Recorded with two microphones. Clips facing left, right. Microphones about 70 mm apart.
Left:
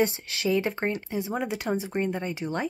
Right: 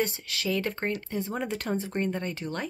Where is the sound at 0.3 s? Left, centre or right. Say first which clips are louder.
Left 4 dB; left.